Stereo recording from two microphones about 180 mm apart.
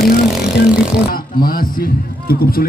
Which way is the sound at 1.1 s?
55° left (ahead or behind).